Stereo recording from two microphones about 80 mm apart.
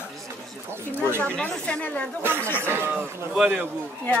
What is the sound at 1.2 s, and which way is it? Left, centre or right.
Speech, centre.